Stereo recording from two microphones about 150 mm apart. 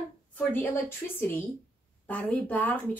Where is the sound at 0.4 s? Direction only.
10° left (ahead or behind).